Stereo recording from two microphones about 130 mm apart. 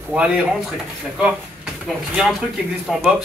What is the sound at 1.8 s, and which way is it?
Speech, 5° right (ahead or behind).